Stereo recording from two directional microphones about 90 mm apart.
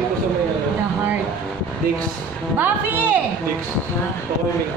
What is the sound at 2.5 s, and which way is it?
Speech, 20° right (ahead or behind).